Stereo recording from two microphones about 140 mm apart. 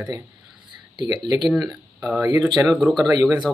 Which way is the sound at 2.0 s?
10° right (ahead or behind).